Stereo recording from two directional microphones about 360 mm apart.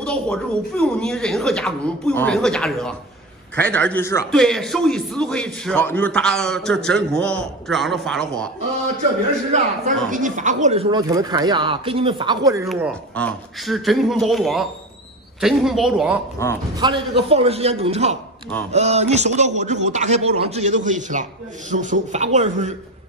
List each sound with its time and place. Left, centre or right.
0.0 s a man's voice: centre
9.5 s a man's voice: right